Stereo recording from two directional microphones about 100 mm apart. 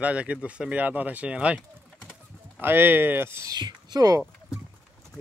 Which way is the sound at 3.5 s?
45° right (ahead or behind).